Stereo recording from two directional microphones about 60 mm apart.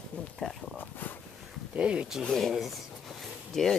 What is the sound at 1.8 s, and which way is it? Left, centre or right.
Speech, right.